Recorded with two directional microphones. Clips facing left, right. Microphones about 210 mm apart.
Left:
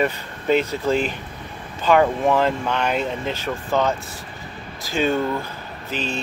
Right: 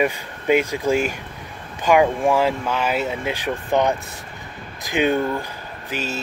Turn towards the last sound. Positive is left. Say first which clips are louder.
# left 1 dB
turn(degrees=-10)  # may be behind; listen again after turning